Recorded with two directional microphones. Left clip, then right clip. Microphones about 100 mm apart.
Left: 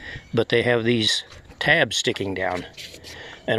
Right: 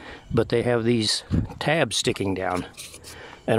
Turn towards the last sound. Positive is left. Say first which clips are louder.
# right 1 dB
turn(degrees=-45)  # may be behind; listen again after turning